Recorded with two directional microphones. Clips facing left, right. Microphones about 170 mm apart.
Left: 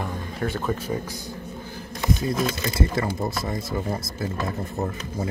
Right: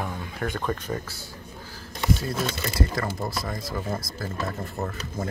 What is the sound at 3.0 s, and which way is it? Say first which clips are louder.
Speech: left 3 dB; 25° left (ahead or behind).